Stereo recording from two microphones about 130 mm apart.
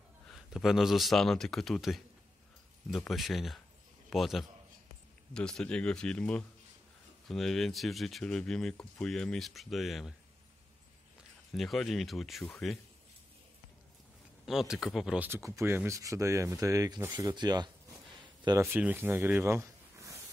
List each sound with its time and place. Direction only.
0.3 s speech: centre (ahead or behind)
3.1 s speech: centre (ahead or behind)
11.5 s speech: centre (ahead or behind)
14.4 s speech: 5° right (ahead or behind)
15.2 s speech: 20° right (ahead or behind)
18.6 s speech: 15° right (ahead or behind)